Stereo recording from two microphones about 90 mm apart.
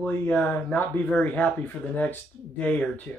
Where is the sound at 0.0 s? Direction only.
15° left (ahead or behind).